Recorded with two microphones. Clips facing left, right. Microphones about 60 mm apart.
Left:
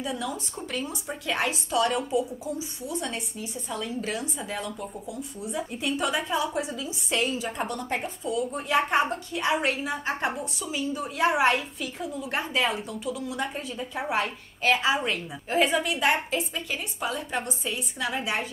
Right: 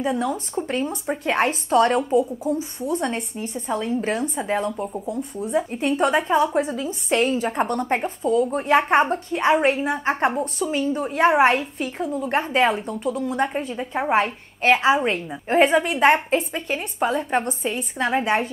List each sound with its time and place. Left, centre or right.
0.0 s speech: right
5.0 s speech: right
9.8 s speech: right